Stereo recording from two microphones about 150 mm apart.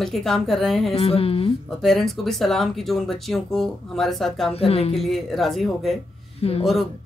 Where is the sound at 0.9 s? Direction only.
40° left (ahead or behind).